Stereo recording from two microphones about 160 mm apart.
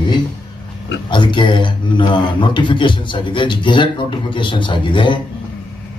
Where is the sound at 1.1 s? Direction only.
30° left (ahead or behind).